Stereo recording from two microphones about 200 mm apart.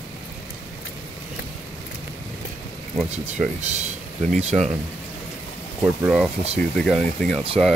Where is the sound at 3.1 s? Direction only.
35° right (ahead or behind).